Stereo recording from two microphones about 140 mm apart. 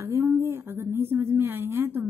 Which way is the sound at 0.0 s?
20° right (ahead or behind).